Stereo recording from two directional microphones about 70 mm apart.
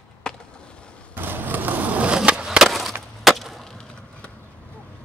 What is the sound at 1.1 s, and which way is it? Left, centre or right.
Skateboard, right.